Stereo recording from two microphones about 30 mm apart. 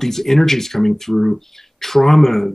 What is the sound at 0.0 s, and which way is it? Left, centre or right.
Speech, centre.